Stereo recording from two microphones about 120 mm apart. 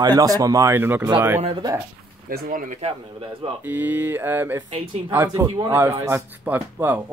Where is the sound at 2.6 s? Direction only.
90° right.